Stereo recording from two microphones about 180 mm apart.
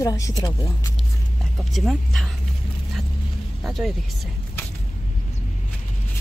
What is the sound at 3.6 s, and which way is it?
Speech, centre (ahead or behind).